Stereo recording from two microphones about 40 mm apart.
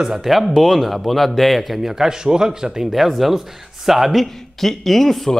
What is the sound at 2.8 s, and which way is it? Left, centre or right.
A man's voice, centre.